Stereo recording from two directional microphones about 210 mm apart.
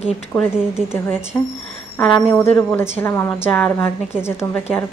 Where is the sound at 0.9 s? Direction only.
10° left (ahead or behind).